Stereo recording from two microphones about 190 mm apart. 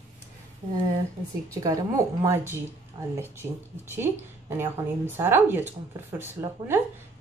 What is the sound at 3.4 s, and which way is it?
A woman's voice, 10° right (ahead or behind).